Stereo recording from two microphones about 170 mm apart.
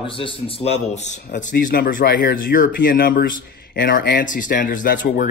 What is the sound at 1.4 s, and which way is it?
Speech, 55° left (ahead or behind).